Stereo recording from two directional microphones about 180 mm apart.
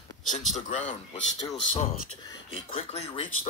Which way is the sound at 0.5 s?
40° left (ahead or behind).